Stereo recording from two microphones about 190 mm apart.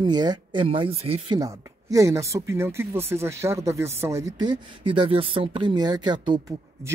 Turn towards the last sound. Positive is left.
turn(degrees=-25)  # may be behind; listen again after turning